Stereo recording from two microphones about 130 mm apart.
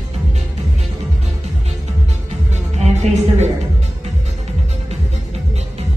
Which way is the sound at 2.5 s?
60° right (ahead or behind).